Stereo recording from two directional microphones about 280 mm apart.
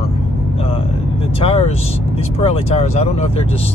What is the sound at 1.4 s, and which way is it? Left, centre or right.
Speech, left.